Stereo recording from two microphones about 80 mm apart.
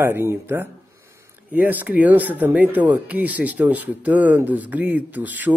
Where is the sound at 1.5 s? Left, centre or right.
Centre.